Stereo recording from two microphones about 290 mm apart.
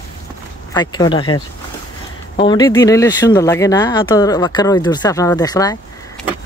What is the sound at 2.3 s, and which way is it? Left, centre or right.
Speech, centre.